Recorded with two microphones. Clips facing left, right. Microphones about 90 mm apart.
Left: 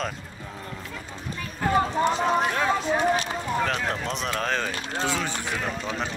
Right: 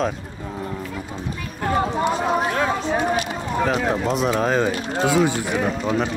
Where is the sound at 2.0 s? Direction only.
10° right (ahead or behind).